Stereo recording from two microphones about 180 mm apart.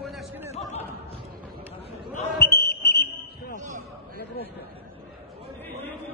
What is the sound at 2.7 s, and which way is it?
Fire alarm, 65° left (ahead or behind).